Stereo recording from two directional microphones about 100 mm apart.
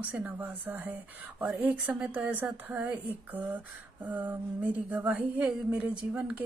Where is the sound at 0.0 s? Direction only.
15° right (ahead or behind).